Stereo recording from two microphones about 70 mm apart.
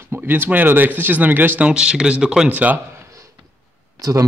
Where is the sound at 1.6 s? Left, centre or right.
Centre.